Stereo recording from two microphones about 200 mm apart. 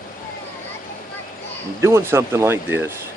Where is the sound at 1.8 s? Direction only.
15° right (ahead or behind).